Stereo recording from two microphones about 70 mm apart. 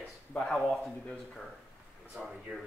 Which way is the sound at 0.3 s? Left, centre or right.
Centre.